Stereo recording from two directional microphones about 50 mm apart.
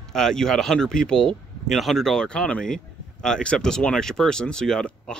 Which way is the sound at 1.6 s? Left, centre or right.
Centre.